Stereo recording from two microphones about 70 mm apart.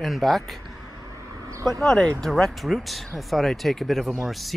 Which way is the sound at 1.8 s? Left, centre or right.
Centre.